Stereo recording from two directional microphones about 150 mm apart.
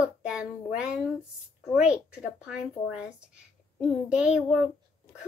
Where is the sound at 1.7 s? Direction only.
5° right (ahead or behind).